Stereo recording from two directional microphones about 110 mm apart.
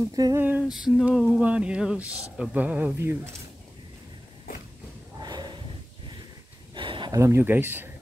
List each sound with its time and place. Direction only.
0.1 s female singing: 35° right (ahead or behind)
0.4 s speech: 15° right (ahead or behind)
0.7 s female singing: 5° right (ahead or behind)
1.2 s speech: 15° right (ahead or behind)
5.2 s snort: 40° right (ahead or behind)
6.7 s a sound: 50° right (ahead or behind)
7.1 s speech: 25° right (ahead or behind)